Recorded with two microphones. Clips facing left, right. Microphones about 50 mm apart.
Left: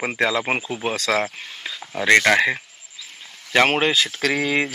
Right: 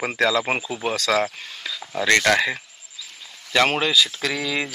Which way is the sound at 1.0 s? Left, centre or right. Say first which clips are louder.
Right 2 dB; left.